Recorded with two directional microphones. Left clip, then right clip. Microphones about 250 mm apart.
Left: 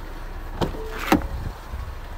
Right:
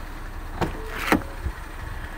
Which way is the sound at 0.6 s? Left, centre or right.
Left.